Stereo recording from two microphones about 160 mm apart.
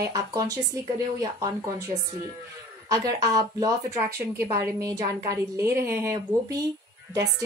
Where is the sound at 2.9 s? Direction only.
20° right (ahead or behind).